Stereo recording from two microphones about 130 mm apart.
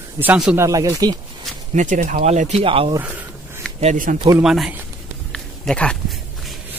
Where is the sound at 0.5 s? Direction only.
25° right (ahead or behind).